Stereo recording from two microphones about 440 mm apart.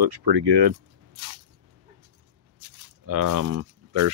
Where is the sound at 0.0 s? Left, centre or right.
Right.